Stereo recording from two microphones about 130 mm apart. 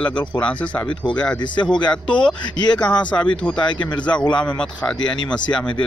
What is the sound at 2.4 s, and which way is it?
Speech, 35° left (ahead or behind).